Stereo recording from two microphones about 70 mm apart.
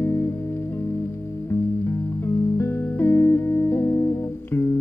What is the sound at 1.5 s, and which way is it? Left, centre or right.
Music, left.